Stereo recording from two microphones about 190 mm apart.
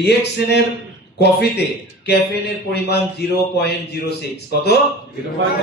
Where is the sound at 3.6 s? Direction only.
60° left (ahead or behind).